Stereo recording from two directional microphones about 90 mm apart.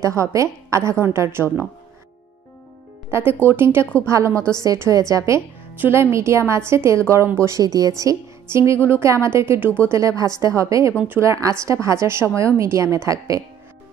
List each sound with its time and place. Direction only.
0.0 s a woman's voice: 35° right (ahead or behind)
3.1 s a woman's voice: 25° right (ahead or behind)
3.8 s a woman's voice: 15° left (ahead or behind)
4.1 s a woman's voice: 30° right (ahead or behind)
7.6 s a woman's voice: 40° right (ahead or behind)